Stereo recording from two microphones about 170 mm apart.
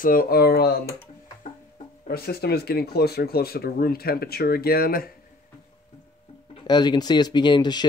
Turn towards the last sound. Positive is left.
turn(degrees=25)  # may be behind; listen again after turning